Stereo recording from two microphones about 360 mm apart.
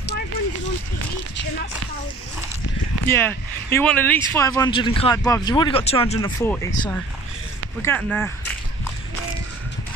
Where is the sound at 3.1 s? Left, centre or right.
Centre.